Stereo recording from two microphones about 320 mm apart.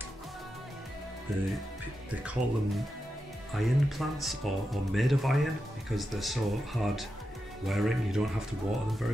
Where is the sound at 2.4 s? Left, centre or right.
Right.